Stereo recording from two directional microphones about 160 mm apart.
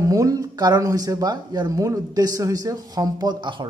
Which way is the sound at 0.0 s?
20° right (ahead or behind).